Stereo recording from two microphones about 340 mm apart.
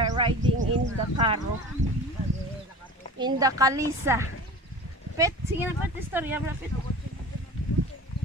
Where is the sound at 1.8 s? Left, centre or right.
Right.